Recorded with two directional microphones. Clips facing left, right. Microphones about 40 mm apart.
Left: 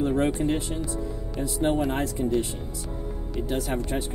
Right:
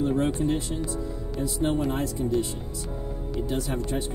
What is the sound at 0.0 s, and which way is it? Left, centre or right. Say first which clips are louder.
Speech: left 1 dB; left.